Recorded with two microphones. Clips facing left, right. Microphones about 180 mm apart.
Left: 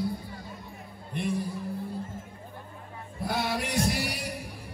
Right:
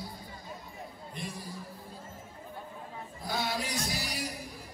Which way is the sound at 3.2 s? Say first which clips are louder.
Left 4 dB; 60° left (ahead or behind).